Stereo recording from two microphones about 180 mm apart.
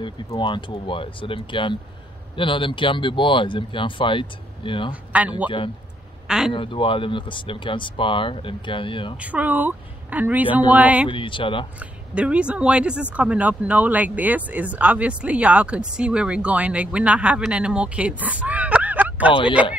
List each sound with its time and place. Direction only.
0.0 s speech: 25° left (ahead or behind)
5.1 s a man's voice: 10° right (ahead or behind)
6.5 s speech: 30° left (ahead or behind)
9.2 s speech: 10° right (ahead or behind)
11.1 s speech: 30° left (ahead or behind)
11.8 s speech: 5° right (ahead or behind)